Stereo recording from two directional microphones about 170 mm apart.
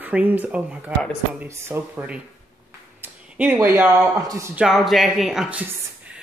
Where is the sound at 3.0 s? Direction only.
10° right (ahead or behind).